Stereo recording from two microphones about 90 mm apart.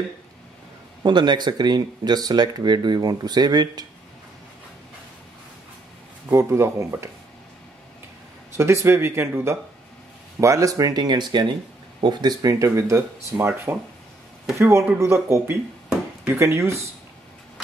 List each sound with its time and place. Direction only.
1.0 s speech: 55° right (ahead or behind)
6.3 s speech: 30° right (ahead or behind)
8.5 s speech: 30° right (ahead or behind)